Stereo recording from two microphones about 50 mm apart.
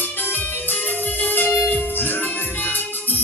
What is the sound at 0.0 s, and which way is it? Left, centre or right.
Music, left.